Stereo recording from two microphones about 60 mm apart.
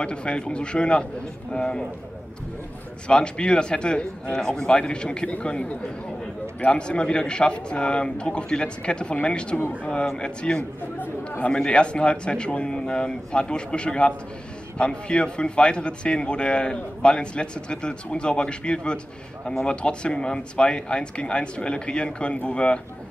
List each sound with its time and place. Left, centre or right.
0.0 s a man's voice: centre
3.1 s a man's voice: centre
11.0 s chatter: left
11.5 s a man's voice: centre